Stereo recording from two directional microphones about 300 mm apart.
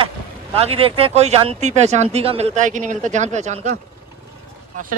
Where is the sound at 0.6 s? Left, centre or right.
Centre.